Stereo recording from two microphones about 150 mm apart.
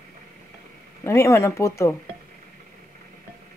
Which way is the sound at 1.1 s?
20° left (ahead or behind).